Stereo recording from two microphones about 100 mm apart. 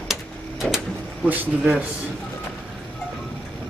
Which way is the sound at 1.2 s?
15° right (ahead or behind).